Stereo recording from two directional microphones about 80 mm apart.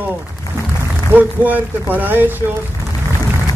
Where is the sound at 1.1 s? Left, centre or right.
Right.